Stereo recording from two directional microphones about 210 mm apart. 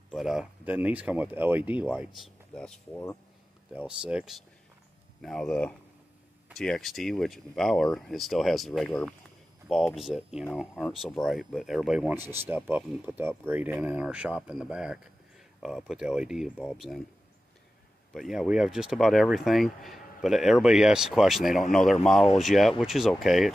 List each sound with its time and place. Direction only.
0.1 s speech: centre (ahead or behind)
3.7 s speech: 5° right (ahead or behind)
18.1 s speech: centre (ahead or behind)
21.5 s speech: 40° left (ahead or behind)
22.0 s speech: centre (ahead or behind)